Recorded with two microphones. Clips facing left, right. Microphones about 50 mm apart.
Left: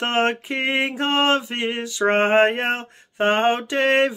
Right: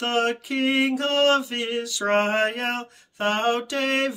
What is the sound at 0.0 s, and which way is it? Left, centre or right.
Mantra, left.